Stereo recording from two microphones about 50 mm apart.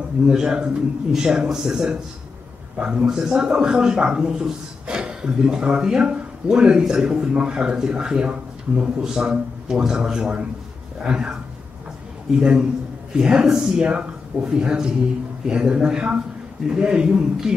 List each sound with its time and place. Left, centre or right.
0.3 s speech: centre
12.4 s speech: centre